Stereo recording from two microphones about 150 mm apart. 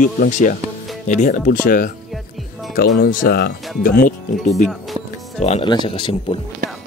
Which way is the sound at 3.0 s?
80° left.